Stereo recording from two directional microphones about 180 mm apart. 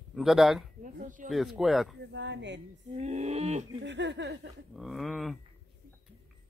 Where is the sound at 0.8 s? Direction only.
45° right (ahead or behind).